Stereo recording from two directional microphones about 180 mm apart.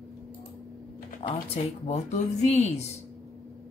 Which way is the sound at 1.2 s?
35° left (ahead or behind).